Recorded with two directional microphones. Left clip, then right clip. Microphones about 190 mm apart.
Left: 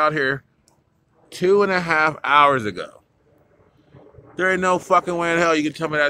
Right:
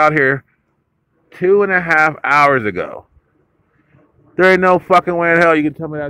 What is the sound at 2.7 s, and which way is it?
Speech, 15° right (ahead or behind).